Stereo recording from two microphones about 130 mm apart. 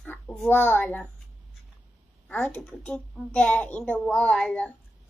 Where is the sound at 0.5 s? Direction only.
15° left (ahead or behind).